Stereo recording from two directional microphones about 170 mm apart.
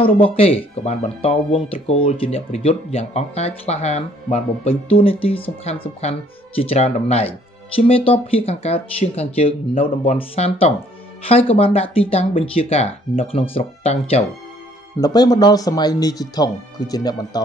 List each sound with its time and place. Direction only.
0.0 s speech: 35° left (ahead or behind)
15.0 s speech: 25° left (ahead or behind)